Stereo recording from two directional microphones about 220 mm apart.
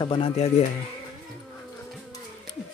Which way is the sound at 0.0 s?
25° left (ahead or behind).